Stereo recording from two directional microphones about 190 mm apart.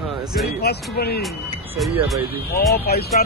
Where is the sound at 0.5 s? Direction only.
55° left (ahead or behind).